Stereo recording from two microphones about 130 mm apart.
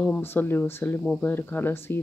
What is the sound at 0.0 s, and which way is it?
Speech, 15° left (ahead or behind).